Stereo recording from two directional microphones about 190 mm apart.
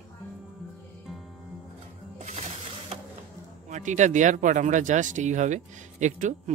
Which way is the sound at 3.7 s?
40° right (ahead or behind).